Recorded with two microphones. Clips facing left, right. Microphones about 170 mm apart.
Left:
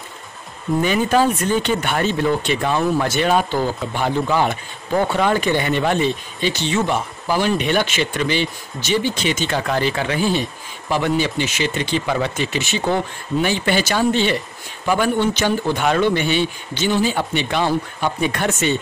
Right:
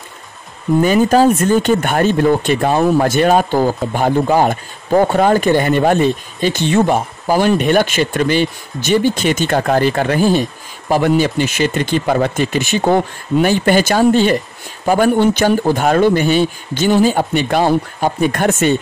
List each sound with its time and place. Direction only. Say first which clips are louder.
0.8 s speech: right 6 dB; 40° right (ahead or behind)